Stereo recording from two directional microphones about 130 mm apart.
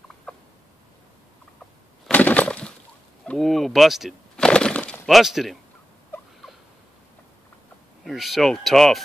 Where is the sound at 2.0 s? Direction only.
10° left (ahead or behind).